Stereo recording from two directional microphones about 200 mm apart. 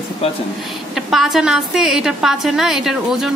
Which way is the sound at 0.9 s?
Centre (ahead or behind).